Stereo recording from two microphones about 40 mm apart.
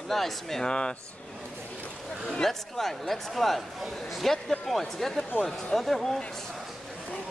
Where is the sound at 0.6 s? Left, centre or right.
Left.